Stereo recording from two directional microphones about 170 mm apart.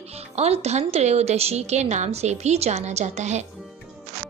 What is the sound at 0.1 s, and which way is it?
A woman's voice, 40° right (ahead or behind).